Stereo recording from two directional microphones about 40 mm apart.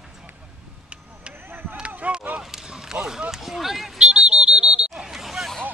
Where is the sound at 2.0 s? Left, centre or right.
Right.